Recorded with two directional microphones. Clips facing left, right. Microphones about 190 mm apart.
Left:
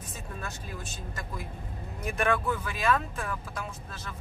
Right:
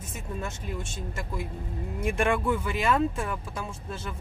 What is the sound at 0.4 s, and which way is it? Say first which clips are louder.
Speech: right 6 dB; 25° right (ahead or behind).